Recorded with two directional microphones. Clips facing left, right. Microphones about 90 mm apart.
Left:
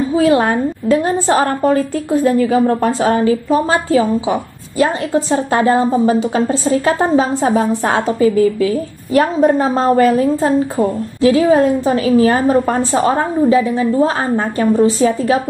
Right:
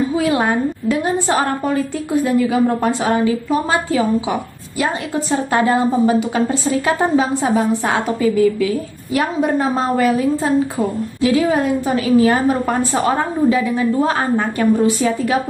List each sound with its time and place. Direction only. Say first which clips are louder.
0.2 s a woman's voice: left 7 dB; 35° left (ahead or behind)